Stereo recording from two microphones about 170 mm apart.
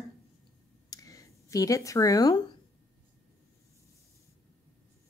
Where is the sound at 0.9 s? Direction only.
20° left (ahead or behind).